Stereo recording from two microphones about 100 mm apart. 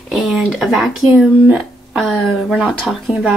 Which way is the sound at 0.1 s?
5° right (ahead or behind).